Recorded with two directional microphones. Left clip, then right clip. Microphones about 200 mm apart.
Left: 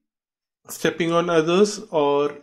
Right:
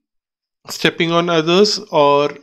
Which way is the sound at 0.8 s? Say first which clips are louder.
Right 5 dB; 25° right (ahead or behind).